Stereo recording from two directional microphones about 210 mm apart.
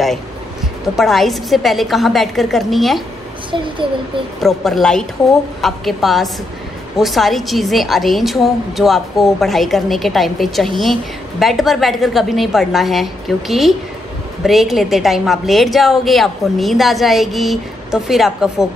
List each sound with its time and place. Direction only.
0.9 s a woman's voice: centre (ahead or behind)
3.5 s speech: 25° right (ahead or behind)
4.4 s a woman's voice: centre (ahead or behind)